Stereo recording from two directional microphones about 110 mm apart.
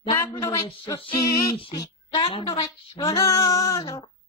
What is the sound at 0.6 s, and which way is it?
Speech, 45° left (ahead or behind).